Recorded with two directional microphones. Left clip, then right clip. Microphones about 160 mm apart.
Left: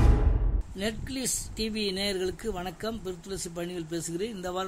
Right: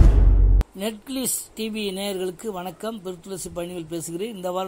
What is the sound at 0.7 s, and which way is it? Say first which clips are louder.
A woman's voice: right 3 dB; 15° right (ahead or behind).